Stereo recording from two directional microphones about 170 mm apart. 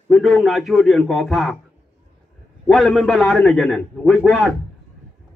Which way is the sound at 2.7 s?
Centre (ahead or behind).